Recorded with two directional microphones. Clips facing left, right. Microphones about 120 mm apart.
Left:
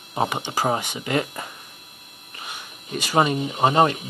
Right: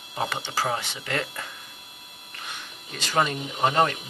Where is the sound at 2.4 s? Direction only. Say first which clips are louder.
Left 2 dB; 10° left (ahead or behind).